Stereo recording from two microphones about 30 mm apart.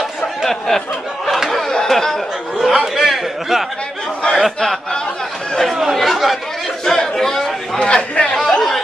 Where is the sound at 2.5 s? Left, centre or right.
Centre.